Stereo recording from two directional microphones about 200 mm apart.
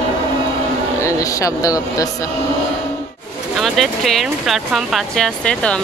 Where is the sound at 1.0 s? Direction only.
15° left (ahead or behind).